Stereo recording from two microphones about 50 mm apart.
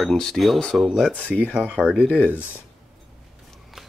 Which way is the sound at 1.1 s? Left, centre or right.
Left.